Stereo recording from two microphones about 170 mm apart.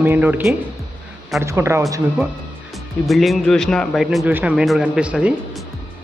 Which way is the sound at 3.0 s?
Centre (ahead or behind).